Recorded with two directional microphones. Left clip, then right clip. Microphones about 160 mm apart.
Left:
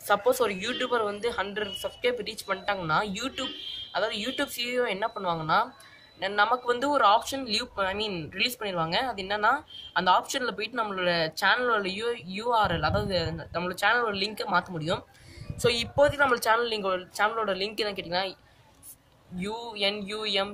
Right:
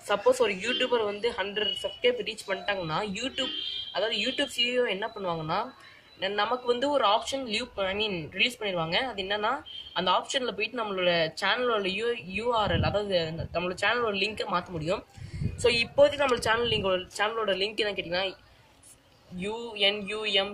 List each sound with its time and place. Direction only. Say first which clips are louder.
0.1 s speech: even; 5° right (ahead or behind)
19.4 s speech: right 2 dB; centre (ahead or behind)